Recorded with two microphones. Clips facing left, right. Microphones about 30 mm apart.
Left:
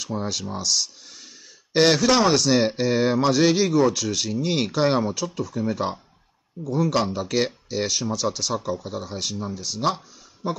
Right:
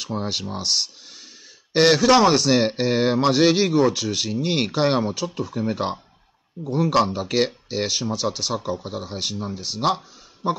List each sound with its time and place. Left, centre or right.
0.0 s speech: right
1.7 s speech: centre
2.7 s speech: right
5.2 s a man's voice: right
7.0 s speech: right